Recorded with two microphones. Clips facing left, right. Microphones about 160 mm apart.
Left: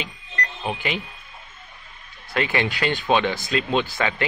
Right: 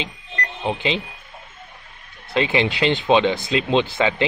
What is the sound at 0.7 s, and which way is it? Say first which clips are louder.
Speech: right 5 dB; 20° right (ahead or behind).